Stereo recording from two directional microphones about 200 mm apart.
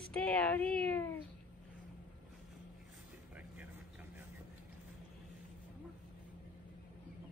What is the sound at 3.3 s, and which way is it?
Vehicle, 5° right (ahead or behind).